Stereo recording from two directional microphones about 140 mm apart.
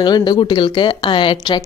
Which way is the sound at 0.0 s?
30° left (ahead or behind).